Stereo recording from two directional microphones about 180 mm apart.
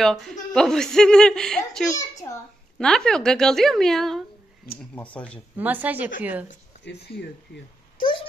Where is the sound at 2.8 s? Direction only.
5° left (ahead or behind).